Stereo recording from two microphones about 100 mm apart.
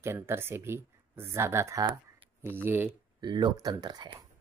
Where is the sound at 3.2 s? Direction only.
50° right (ahead or behind).